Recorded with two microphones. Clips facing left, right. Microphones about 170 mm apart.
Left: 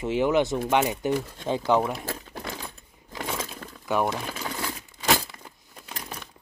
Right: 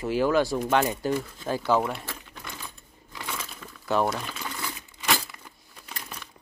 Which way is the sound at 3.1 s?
45° left (ahead or behind).